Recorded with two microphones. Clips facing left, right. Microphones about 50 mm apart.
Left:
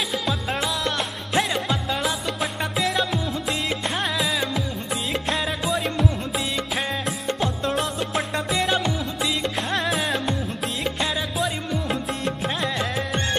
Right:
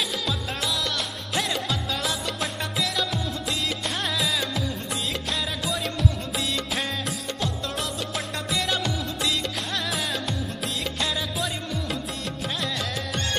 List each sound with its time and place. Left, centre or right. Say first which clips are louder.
0.8 s music: left 4 dB; left